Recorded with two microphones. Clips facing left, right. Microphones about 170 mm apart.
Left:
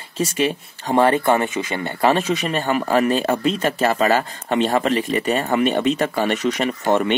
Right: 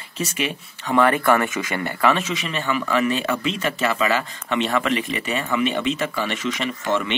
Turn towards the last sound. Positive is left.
turn(degrees=40)  # may be behind; listen again after turning